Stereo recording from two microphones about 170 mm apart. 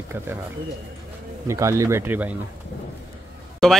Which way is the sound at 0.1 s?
10° right (ahead or behind).